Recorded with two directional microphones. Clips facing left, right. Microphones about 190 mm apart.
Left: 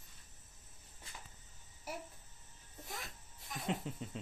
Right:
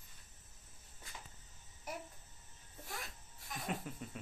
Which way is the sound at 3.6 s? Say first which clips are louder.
Left 3 dB; 25° left (ahead or behind).